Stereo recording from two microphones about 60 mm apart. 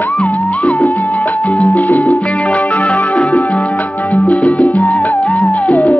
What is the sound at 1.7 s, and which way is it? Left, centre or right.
Music, left.